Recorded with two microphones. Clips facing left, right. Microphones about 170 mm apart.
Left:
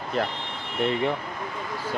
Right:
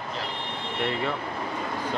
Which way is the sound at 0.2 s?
55° left (ahead or behind).